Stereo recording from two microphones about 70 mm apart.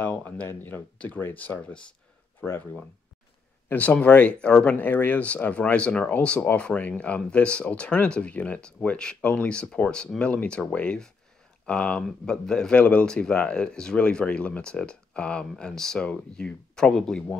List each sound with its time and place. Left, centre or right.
0.0 s speech: left
3.7 s speech: left